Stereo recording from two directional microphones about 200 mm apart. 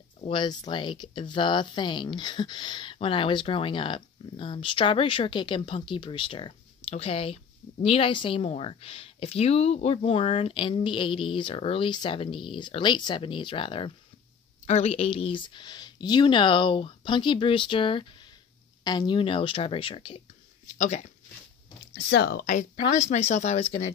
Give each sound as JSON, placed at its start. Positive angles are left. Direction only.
{"t": 0.2, "sound": "speech", "side_deg": 25}
{"t": 20.7, "sound": "speech", "side_deg": 40}
{"t": 21.9, "sound": "speech", "side_deg": 50}
{"t": 22.8, "sound": "speech", "side_deg": 35}